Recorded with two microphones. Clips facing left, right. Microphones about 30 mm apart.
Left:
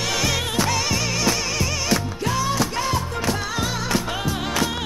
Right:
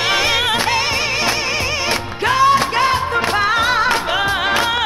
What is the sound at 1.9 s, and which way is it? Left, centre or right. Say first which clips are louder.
Music: right 6 dB; right.